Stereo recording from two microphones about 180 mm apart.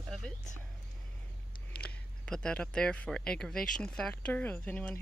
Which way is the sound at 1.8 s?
5° left (ahead or behind).